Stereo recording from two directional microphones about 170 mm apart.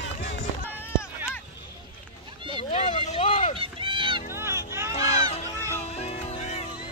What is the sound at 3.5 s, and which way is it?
Run, 30° right (ahead or behind).